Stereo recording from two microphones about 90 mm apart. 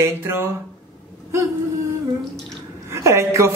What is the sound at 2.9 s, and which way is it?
Speech, 30° right (ahead or behind).